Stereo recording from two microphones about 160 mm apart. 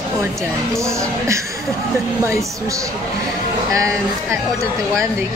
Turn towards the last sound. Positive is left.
turn(degrees=-20)  # may be behind; listen again after turning